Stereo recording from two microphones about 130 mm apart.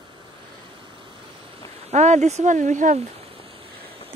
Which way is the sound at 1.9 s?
65° right (ahead or behind).